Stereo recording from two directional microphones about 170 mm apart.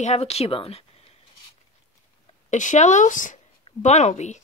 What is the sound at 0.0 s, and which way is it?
Speech, 40° left (ahead or behind).